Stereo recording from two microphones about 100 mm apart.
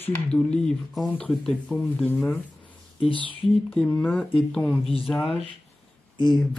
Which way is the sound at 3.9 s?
15° left (ahead or behind).